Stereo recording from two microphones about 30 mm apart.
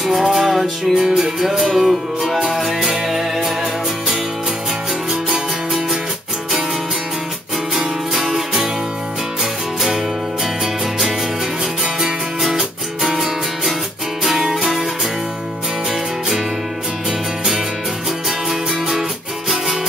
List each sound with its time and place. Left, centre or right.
0.0 s music: centre
5.3 s music: centre
9.4 s music: centre
14.5 s music: centre
18.5 s music: centre